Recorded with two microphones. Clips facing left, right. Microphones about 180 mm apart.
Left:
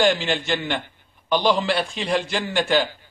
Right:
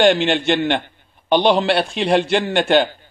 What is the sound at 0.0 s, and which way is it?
A man's voice, 70° right (ahead or behind).